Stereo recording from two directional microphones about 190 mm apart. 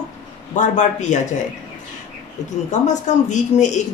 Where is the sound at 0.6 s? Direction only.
40° left (ahead or behind).